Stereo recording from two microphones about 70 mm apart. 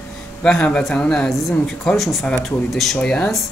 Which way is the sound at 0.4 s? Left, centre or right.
Centre.